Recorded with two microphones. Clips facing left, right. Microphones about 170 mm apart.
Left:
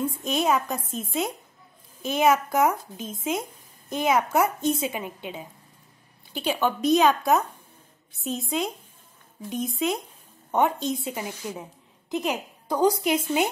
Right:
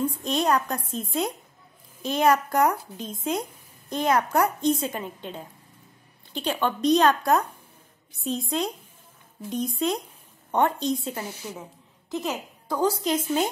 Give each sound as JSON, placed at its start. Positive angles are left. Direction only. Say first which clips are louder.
{"t": 0.2, "sound": "a woman's voice", "louder": "left 1 dB", "side_deg": 5}